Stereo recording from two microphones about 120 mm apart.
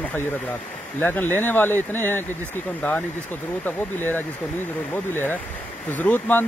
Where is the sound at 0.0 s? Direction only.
15° left (ahead or behind).